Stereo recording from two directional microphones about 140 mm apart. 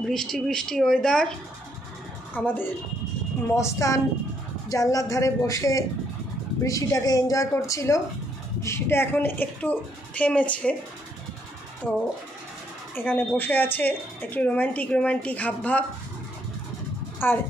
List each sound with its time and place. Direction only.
0.0 s speech: 5° left (ahead or behind)
2.3 s a woman's voice: 15° left (ahead or behind)
11.8 s speech: 10° left (ahead or behind)
17.2 s speech: 15° left (ahead or behind)